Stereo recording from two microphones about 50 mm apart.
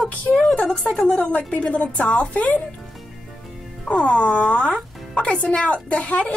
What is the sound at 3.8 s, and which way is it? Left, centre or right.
Speech, left.